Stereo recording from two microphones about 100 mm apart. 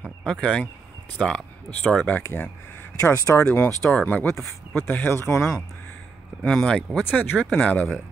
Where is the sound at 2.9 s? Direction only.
35° left (ahead or behind).